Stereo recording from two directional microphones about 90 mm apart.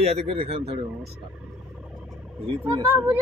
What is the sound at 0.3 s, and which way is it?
Speech, 90° right.